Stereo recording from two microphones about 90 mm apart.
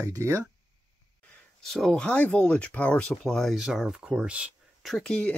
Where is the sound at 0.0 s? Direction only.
35° right (ahead or behind).